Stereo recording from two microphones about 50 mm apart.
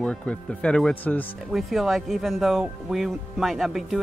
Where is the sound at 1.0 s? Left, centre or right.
Left.